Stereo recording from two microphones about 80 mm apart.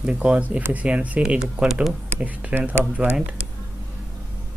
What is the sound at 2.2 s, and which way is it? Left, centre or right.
Speech, centre.